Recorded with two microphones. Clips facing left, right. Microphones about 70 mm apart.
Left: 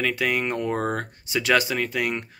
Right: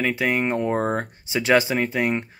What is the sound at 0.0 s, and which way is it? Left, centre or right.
Speech, right.